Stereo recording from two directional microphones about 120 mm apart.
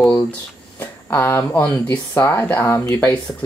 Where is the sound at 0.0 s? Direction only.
10° left (ahead or behind).